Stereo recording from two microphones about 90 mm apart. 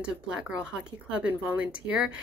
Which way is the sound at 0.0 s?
10° right (ahead or behind).